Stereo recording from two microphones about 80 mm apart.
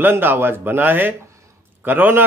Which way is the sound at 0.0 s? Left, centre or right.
Right.